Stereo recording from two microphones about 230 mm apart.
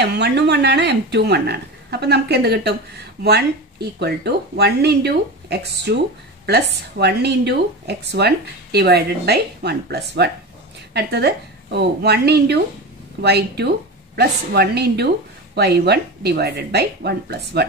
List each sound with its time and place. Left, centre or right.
0.0 s speech: right